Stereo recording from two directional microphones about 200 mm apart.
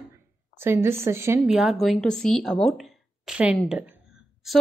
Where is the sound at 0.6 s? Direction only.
10° right (ahead or behind).